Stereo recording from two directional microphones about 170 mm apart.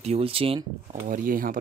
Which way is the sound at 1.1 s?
55° right (ahead or behind).